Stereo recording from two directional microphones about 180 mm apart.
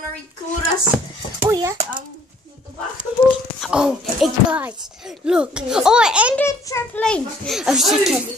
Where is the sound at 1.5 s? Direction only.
20° right (ahead or behind).